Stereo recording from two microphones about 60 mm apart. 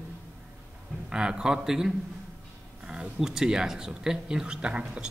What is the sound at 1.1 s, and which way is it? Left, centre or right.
Speech, centre.